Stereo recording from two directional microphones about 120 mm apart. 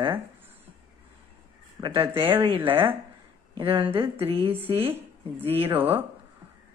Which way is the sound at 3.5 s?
45° right (ahead or behind).